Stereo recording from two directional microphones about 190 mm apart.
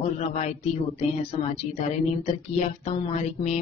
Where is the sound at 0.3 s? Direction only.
35° left (ahead or behind).